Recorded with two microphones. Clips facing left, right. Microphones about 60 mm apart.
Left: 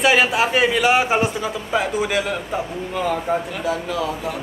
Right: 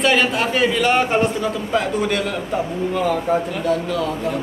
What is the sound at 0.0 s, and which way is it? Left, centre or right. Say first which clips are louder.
A man's voice: left 1 dB; centre.